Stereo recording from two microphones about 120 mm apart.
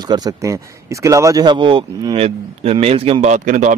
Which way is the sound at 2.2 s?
55° right (ahead or behind).